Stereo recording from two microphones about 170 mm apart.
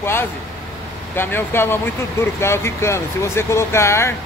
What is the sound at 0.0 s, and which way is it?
Speech, 15° left (ahead or behind).